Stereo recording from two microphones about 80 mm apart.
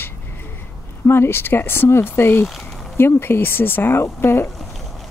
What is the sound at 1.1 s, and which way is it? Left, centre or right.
Speech, left.